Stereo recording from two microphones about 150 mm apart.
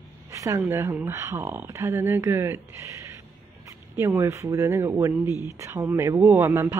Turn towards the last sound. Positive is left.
turn(degrees=-15)  # may be behind; listen again after turning